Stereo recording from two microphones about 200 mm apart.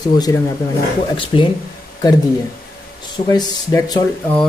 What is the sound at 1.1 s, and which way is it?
Speech, 25° left (ahead or behind).